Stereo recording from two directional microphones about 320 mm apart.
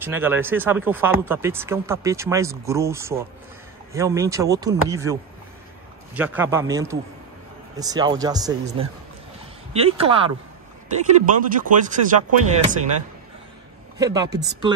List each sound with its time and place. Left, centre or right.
0.0 s speech: centre
6.1 s speech: centre
11.6 s speech: right
13.9 s speech: centre